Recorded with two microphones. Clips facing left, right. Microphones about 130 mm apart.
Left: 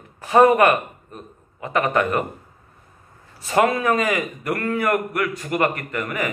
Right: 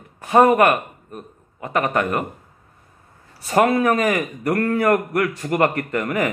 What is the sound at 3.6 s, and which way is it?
A man's voice, 35° right (ahead or behind).